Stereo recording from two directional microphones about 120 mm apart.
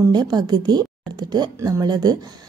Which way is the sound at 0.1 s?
35° right (ahead or behind).